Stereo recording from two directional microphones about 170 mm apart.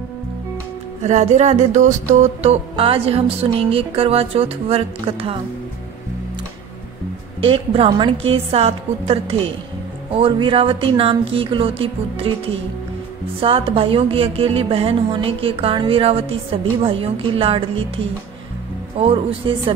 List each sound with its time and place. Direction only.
1.0 s music: 45° right (ahead or behind)
7.4 s music: 35° right (ahead or behind)
13.4 s music: 30° right (ahead or behind)